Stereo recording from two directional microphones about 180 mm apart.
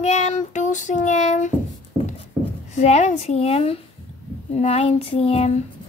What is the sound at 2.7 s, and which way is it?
Child singing, 40° left (ahead or behind).